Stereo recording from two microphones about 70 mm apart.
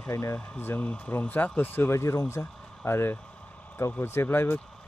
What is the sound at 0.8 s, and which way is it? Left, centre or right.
Speech, centre.